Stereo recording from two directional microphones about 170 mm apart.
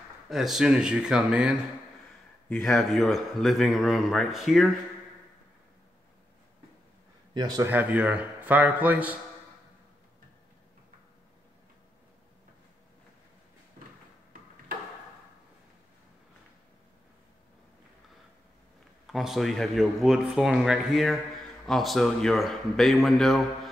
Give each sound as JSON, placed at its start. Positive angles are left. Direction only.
{"t": 0.3, "sound": "speech", "side_deg": 0}
{"t": 7.3, "sound": "speech", "side_deg": -25}
{"t": 7.6, "sound": "a man's voice", "side_deg": -10}
{"t": 19.0, "sound": "speech", "side_deg": 0}